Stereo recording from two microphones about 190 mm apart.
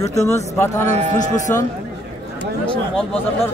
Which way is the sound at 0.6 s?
15° left (ahead or behind).